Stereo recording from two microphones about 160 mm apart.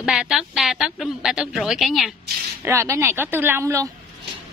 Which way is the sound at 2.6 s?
15° right (ahead or behind).